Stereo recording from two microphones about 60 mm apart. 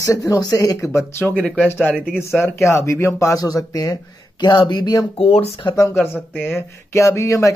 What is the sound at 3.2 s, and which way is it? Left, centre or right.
Speech, left.